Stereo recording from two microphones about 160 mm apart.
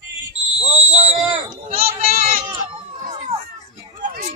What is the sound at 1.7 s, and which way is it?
Children playing, 50° right (ahead or behind).